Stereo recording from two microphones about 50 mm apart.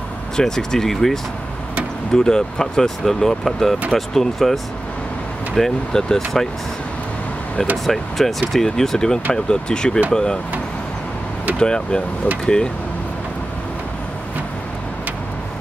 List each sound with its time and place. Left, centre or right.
0.4 s speech: centre
7.7 s speech: centre
11.5 s speech: centre